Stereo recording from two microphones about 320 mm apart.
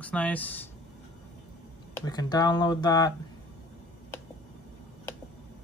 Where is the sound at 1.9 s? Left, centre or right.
Centre.